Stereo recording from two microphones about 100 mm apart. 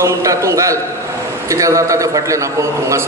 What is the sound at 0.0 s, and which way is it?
A man's voice, 30° right (ahead or behind).